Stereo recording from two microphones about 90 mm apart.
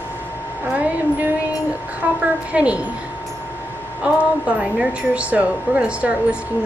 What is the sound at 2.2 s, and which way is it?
Speech, 15° right (ahead or behind).